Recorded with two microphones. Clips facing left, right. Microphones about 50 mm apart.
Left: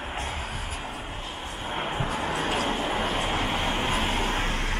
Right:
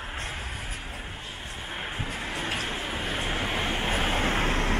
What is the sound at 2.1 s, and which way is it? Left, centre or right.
Vehicle, left.